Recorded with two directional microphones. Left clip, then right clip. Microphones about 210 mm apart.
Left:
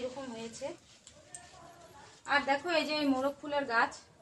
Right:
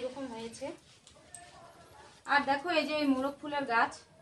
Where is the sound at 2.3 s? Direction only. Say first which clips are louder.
Right 1 dB; 15° right (ahead or behind).